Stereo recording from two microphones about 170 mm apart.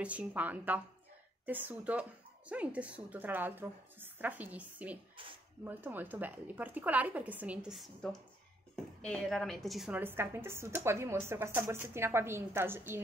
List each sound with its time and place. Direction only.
0.0 s a woman's voice: 10° right (ahead or behind)
5.2 s speech: 30° right (ahead or behind)
5.6 s a woman's voice: 10° right (ahead or behind)